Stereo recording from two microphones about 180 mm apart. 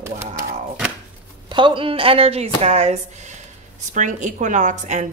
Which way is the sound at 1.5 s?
25° right (ahead or behind).